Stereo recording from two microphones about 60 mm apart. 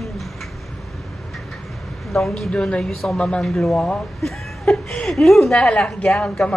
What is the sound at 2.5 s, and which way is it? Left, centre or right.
Speech, centre.